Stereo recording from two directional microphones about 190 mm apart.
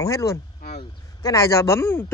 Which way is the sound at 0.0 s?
15° left (ahead or behind).